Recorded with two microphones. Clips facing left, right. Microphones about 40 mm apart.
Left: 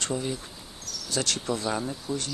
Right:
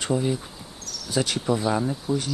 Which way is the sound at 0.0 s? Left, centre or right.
Centre.